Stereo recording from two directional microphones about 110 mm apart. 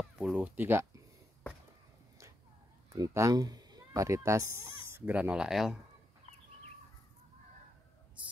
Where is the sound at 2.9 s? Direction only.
30° right (ahead or behind); by 5.8 s 5° right (ahead or behind).